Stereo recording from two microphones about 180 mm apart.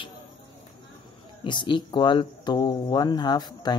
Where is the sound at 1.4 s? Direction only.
25° left (ahead or behind).